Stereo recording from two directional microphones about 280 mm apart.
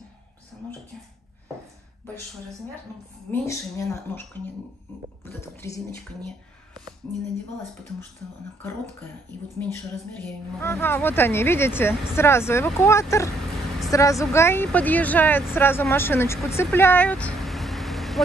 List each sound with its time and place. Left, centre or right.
3.3 s speech: centre
5.4 s speech: centre
7.1 s speech: centre
10.2 s speech: centre